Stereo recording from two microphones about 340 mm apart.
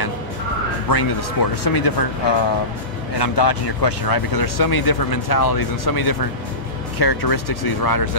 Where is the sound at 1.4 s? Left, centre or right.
Left.